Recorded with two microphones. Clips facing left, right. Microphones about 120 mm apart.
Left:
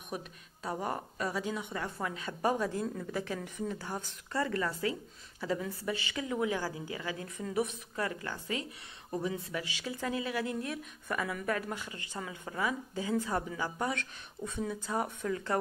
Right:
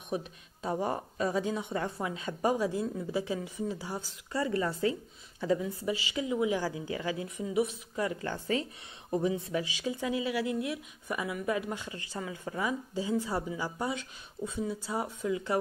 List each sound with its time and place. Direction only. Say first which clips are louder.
0.8 s a woman's voice: right 4 dB; 25° right (ahead or behind)
2.5 s a woman's voice: right 3 dB; 10° right (ahead or behind)
8.2 s a woman's voice: right 5 dB; 30° right (ahead or behind); by 15.5 s 15° right (ahead or behind)